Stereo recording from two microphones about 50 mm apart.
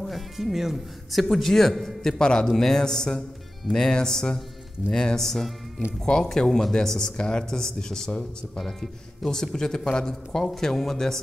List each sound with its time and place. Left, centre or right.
0.0 s speech: centre
8.1 s speech: left
8.5 s speech: centre